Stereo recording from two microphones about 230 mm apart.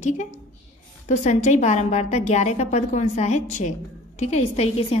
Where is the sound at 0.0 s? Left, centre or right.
Left.